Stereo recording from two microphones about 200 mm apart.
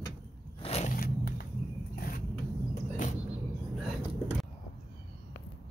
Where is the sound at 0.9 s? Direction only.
50° left (ahead or behind).